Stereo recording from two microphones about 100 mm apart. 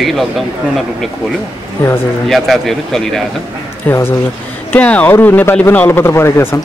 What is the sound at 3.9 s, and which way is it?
Speech, 20° left (ahead or behind).